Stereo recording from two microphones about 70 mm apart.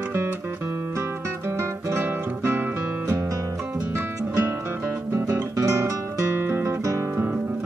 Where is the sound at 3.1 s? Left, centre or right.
Right.